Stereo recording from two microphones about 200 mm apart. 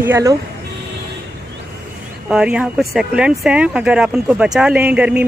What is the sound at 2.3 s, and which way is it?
Speech, 5° right (ahead or behind).